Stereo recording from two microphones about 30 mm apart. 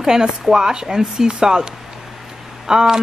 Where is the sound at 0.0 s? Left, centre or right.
Right.